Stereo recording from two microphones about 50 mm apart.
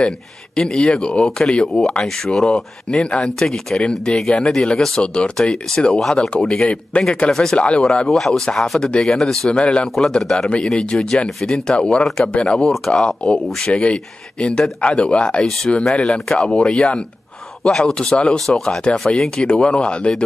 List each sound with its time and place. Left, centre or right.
0.6 s speech: centre
3.0 s speech: centre
5.0 s speech: left
6.7 s speech: left
7.2 s speech: centre
7.5 s speech: left
7.8 s speech: centre
9.5 s speech: left
9.9 s speech: centre
12.5 s speech: centre
12.9 s speech: centre
15.4 s speech: centre